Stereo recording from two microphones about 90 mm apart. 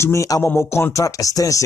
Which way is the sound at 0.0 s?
35° left (ahead or behind).